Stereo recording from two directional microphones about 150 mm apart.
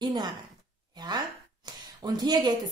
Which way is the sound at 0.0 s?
30° right (ahead or behind).